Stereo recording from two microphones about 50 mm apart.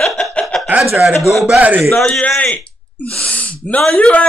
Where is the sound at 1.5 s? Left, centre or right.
Right.